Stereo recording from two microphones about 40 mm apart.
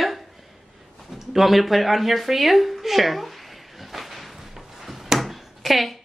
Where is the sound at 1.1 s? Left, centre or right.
Centre.